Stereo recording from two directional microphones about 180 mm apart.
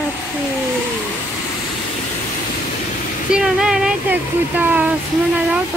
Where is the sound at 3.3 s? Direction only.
5° right (ahead or behind).